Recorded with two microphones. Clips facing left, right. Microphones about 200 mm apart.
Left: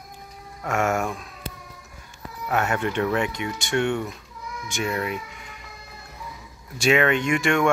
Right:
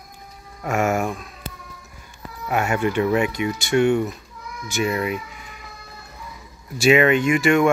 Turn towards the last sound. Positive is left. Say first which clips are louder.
# right 4 dB
turn(degrees=-5)  # may be behind; listen again after turning